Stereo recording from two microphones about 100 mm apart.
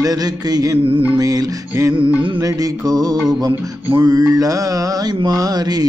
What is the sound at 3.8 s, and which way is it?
Music, 20° right (ahead or behind).